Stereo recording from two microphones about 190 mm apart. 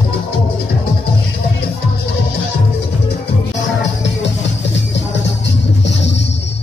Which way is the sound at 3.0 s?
70° left (ahead or behind).